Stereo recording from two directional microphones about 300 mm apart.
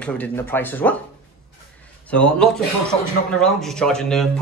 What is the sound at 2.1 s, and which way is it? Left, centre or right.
Speech, centre.